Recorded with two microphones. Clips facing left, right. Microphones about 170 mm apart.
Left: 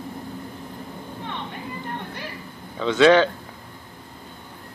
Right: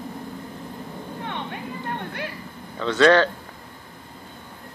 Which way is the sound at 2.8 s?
5° left (ahead or behind).